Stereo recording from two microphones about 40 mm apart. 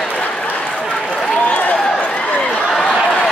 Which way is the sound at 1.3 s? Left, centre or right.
Left.